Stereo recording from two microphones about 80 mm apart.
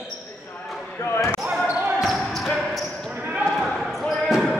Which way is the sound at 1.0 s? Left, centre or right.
Left.